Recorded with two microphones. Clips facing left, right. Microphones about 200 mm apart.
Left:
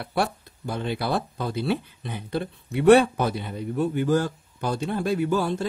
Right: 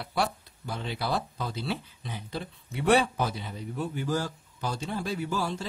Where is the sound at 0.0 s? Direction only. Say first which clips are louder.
Left 4 dB; 55° left (ahead or behind).